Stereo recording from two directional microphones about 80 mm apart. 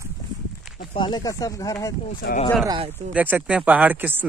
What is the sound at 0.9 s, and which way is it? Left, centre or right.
Speech, left.